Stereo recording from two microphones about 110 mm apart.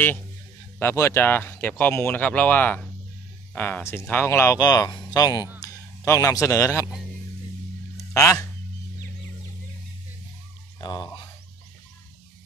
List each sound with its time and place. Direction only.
0.7 s speech: 20° left (ahead or behind)
4.6 s speech: 35° left (ahead or behind)
8.1 s speech: 30° left (ahead or behind)
10.8 s speech: 40° left (ahead or behind)